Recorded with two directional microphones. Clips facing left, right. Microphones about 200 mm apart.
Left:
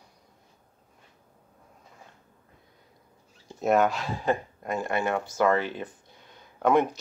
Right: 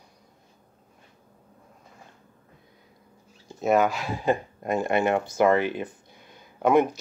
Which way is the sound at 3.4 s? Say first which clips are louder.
Right 1 dB; centre (ahead or behind).